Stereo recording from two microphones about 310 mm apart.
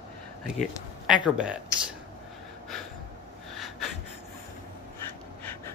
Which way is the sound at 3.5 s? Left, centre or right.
Centre.